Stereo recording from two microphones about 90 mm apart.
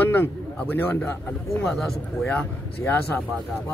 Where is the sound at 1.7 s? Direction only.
5° left (ahead or behind).